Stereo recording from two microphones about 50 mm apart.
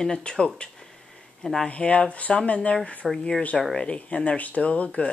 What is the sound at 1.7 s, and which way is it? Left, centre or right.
Speech, left.